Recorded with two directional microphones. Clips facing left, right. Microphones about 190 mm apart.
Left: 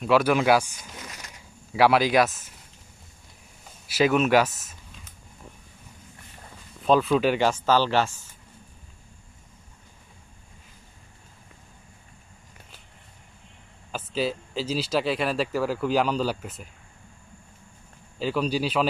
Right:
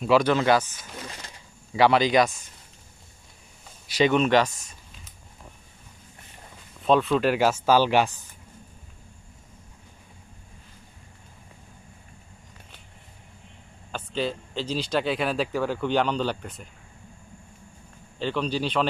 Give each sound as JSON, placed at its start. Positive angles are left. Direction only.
{"t": 0.0, "sound": "speech", "side_deg": 5}
{"t": 1.0, "sound": "a sound", "side_deg": -30}
{"t": 1.7, "sound": "speech", "side_deg": 5}
{"t": 3.8, "sound": "speech", "side_deg": 5}
{"t": 6.8, "sound": "speech", "side_deg": 0}
{"t": 13.9, "sound": "speech", "side_deg": 5}
{"t": 18.2, "sound": "speech", "side_deg": 5}